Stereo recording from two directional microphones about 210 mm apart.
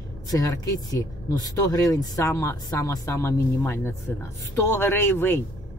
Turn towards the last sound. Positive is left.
turn(degrees=10)  # may be behind; listen again after turning